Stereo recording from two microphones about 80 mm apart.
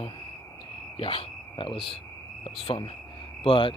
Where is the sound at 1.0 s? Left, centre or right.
Left.